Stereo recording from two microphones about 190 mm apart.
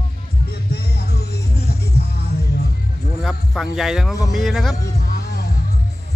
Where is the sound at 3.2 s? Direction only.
Centre (ahead or behind).